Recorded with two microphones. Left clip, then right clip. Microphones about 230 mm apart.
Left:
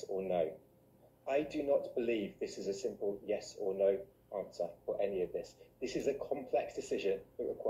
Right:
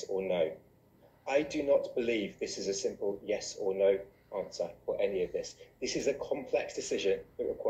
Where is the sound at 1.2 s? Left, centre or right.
Centre.